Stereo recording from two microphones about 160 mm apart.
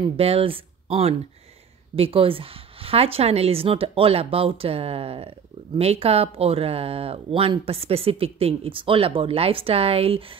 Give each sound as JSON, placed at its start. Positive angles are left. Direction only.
{"t": 0.0, "sound": "a woman's voice", "side_deg": -35}